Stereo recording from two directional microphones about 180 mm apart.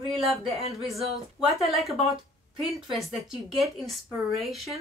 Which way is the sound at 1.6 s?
Centre (ahead or behind).